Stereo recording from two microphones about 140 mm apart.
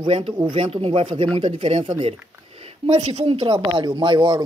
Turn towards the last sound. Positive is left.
turn(degrees=-35)  # may be behind; listen again after turning